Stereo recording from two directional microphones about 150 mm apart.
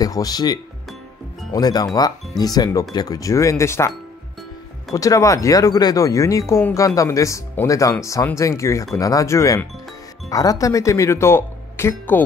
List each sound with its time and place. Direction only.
0.0 s speech: 25° left (ahead or behind)
4.9 s speech: 20° left (ahead or behind)